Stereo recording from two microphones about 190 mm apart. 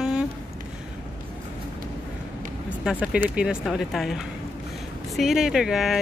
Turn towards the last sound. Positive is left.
turn(degrees=0)  # may be behind; listen again after turning